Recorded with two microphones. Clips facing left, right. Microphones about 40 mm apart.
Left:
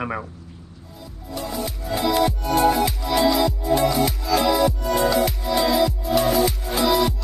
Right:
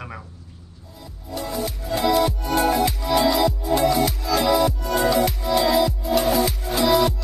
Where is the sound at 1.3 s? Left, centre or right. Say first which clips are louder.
Right 1 dB; centre.